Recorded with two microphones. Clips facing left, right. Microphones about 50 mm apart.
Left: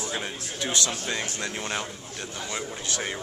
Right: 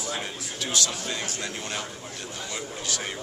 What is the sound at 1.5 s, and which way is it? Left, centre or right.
Speech, centre.